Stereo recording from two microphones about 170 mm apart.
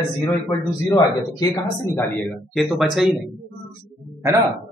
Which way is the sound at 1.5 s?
15° left (ahead or behind).